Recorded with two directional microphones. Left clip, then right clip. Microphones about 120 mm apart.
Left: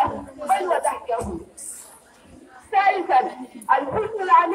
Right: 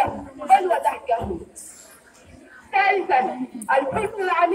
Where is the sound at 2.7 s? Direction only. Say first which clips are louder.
Left 1 dB; 60° left (ahead or behind).